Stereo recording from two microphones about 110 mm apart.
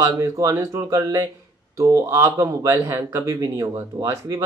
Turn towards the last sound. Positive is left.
turn(degrees=-30)  # may be behind; listen again after turning